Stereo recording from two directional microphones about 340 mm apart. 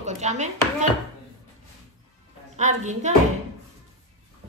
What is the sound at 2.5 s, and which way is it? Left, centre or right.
Speech, right.